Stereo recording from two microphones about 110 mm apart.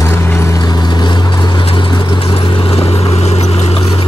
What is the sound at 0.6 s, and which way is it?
Vehicle, 40° left (ahead or behind).